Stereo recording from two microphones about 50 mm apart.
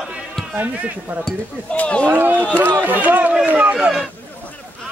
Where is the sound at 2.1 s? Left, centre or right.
Right.